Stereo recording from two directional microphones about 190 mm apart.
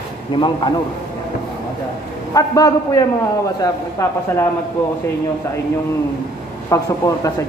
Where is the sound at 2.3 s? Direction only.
20° left (ahead or behind).